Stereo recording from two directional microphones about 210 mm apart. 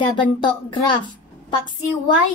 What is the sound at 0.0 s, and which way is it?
Speech, 20° left (ahead or behind).